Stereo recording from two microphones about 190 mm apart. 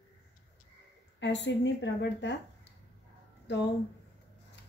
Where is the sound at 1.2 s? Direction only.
70° left (ahead or behind).